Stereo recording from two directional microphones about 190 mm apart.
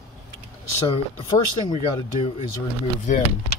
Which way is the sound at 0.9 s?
25° left (ahead or behind).